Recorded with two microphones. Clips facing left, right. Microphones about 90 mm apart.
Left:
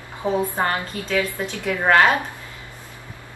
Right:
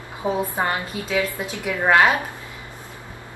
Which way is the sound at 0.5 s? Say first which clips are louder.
Left 1 dB; 15° right (ahead or behind).